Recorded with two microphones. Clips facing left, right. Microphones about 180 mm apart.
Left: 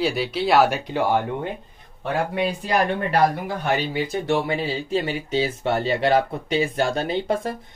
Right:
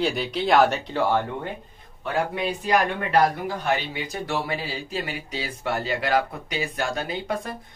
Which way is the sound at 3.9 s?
25° left (ahead or behind).